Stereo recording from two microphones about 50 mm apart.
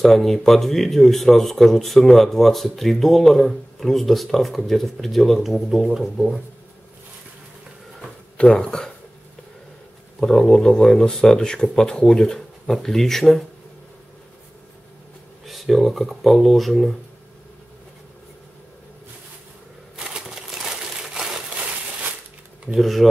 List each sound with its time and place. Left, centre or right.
0.0 s speech: centre
8.4 s speech: centre
10.2 s speech: centre
15.4 s speech: centre
20.0 s crumpling: centre
22.7 s speech: centre